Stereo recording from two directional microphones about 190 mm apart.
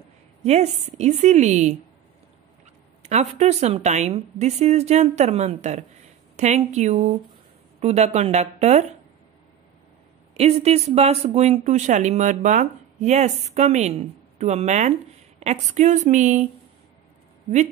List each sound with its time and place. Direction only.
0.4 s speech: 35° right (ahead or behind)
3.0 s speech: 35° right (ahead or behind)
10.3 s speech: 30° right (ahead or behind)